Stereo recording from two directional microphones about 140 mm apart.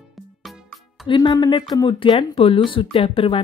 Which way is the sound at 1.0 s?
35° left (ahead or behind).